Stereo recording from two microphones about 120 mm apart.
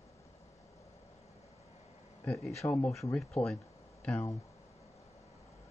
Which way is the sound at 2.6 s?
30° left (ahead or behind).